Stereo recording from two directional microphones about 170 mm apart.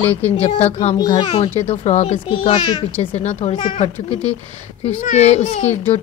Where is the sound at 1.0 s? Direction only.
30° left (ahead or behind).